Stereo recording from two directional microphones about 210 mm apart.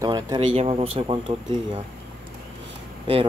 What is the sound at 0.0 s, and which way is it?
Speech, 20° right (ahead or behind).